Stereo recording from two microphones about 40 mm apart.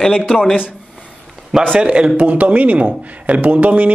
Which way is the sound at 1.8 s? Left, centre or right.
Right.